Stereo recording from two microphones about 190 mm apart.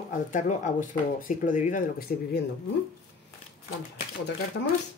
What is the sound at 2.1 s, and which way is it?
Speech, 55° left (ahead or behind).